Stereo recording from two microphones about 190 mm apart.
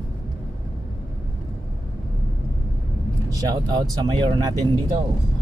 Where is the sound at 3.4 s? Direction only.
20° right (ahead or behind).